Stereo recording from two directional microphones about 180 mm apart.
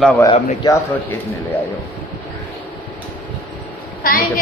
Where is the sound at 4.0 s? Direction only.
50° left (ahead or behind).